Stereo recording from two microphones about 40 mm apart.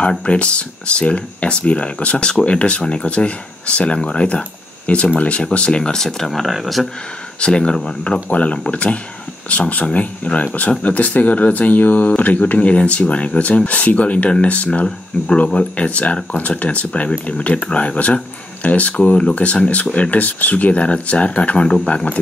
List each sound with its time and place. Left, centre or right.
0.1 s speech: left; by 6.9 s centre
7.3 s speech: left